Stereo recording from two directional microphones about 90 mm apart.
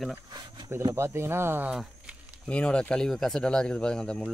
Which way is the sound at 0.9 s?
30° right (ahead or behind).